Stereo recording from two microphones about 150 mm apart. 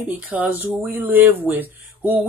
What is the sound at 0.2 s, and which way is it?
Speech, 10° right (ahead or behind).